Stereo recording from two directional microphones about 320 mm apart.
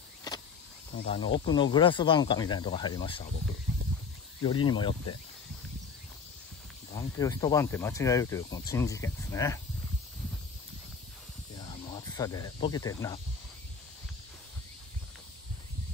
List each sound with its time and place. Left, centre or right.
0.3 s vehicle: centre
0.9 s speech: centre
4.4 s speech: centre
6.9 s speech: centre
11.9 s speech: centre